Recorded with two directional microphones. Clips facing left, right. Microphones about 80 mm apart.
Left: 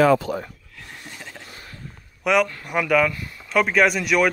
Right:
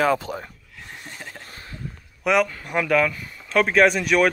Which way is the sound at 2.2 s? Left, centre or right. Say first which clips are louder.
Even; centre.